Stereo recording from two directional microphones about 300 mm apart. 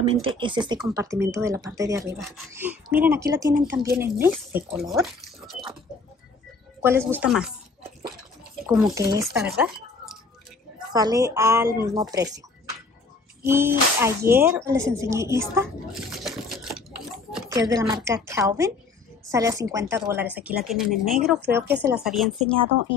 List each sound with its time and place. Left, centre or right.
0.0 s speech: centre
6.8 s speech: centre
8.6 s speech: centre
9.4 s a sound: centre
10.9 s speech: centre
13.4 s speech: centre
17.3 s speech: centre